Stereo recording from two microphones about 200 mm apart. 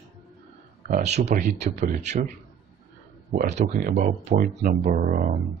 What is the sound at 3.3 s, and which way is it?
Speech, 35° right (ahead or behind).